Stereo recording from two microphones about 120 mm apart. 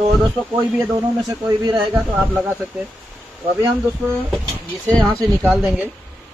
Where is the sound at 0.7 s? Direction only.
25° right (ahead or behind).